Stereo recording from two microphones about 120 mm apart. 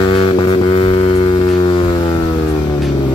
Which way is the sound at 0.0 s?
45° left (ahead or behind).